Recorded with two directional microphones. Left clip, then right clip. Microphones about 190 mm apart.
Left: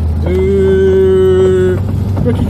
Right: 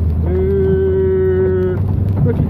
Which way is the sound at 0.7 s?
40° left (ahead or behind).